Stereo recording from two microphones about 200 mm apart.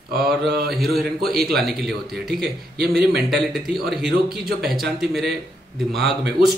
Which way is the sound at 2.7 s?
50° right (ahead or behind).